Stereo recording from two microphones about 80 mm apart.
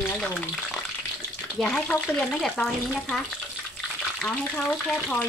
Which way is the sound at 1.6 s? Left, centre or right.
Centre.